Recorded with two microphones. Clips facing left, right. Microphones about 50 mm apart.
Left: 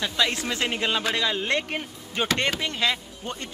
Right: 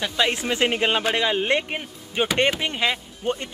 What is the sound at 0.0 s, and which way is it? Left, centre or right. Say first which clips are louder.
Speech: right 2 dB; right.